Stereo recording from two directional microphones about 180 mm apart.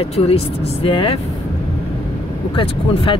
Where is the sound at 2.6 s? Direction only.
30° left (ahead or behind).